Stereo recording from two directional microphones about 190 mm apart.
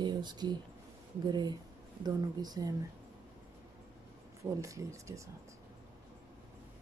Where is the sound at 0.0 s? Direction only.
25° right (ahead or behind).